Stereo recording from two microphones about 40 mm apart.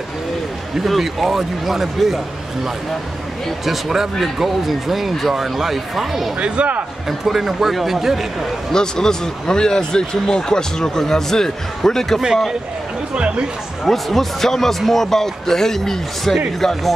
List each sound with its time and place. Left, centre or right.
0.7 s a man's voice: centre
6.4 s speech: right
7.1 s a man's voice: centre
8.7 s speech: centre
13.1 s speech: right
13.8 s a man's voice: centre